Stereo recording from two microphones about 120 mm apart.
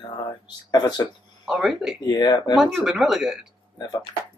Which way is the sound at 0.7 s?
35° left (ahead or behind).